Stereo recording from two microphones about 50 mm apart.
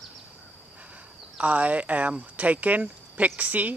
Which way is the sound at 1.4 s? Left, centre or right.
Right.